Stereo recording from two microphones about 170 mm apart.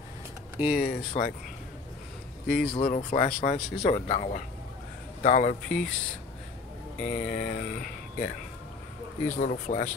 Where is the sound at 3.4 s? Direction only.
40° left (ahead or behind).